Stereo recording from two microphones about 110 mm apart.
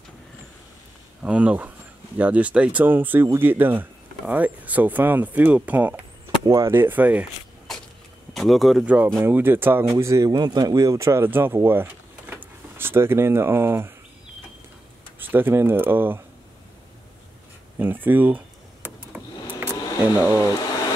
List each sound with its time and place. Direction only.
1.2 s speech: 10° right (ahead or behind)
6.4 s speech: 30° right (ahead or behind)
8.3 s speech: centre (ahead or behind)
8.8 s speech: 15° right (ahead or behind)
15.1 s speech: 15° right (ahead or behind)
17.7 s a sound: 15° right (ahead or behind)
20.3 s a sound: 30° left (ahead or behind)